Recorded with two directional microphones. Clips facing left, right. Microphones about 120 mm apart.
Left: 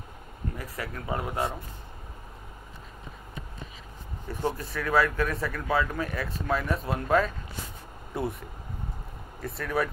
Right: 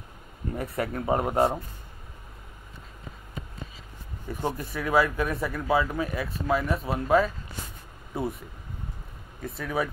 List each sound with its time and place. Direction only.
0.7 s speech: 30° right (ahead or behind)
4.3 s speech: 15° right (ahead or behind)
9.4 s speech: centre (ahead or behind)